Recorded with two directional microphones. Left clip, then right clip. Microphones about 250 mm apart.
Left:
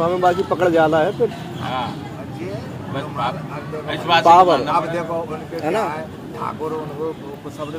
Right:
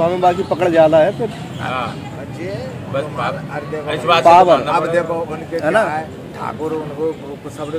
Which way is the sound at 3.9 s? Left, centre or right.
Right.